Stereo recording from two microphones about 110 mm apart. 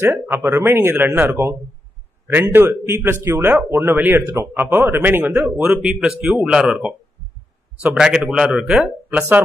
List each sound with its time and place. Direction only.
0.0 s speech: 20° right (ahead or behind)
7.9 s speech: 10° right (ahead or behind)